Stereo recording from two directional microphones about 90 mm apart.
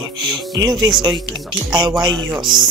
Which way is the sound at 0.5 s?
55° right (ahead or behind).